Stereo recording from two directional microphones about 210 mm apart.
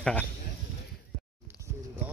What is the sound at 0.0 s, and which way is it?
Speech, 5° left (ahead or behind).